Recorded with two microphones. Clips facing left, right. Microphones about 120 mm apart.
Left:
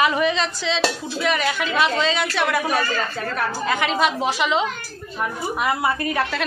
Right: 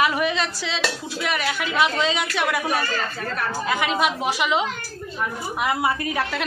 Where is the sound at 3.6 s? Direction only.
5° right (ahead or behind).